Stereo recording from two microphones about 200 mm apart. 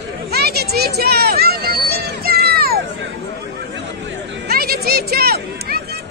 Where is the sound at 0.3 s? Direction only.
55° right (ahead or behind).